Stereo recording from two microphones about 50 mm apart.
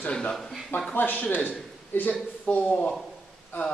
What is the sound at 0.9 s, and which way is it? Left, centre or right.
A man's voice, left.